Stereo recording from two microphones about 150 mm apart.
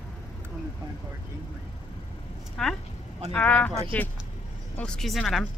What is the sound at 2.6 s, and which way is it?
Speech, 5° left (ahead or behind).